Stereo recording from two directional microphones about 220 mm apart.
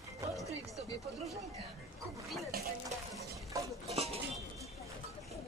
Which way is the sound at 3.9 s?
30° right (ahead or behind).